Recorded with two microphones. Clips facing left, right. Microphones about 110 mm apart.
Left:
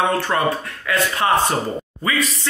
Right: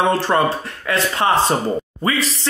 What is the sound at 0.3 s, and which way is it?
Speech, 30° right (ahead or behind).